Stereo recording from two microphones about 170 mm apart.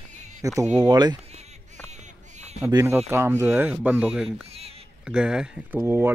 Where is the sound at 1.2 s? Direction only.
40° right (ahead or behind).